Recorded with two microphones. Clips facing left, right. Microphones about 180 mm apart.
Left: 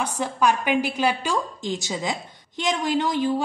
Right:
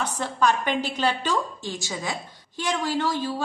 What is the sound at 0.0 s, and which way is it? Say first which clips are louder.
A woman's voice: left 1 dB; 10° left (ahead or behind).